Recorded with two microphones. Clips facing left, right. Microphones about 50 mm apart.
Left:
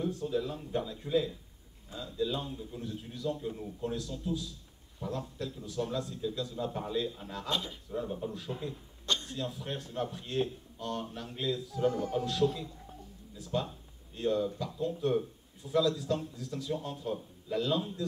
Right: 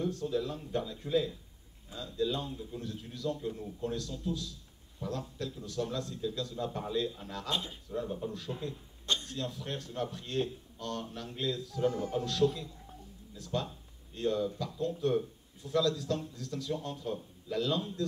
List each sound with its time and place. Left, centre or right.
0.0 s speech: centre
7.4 s speech: right
7.9 s speech: centre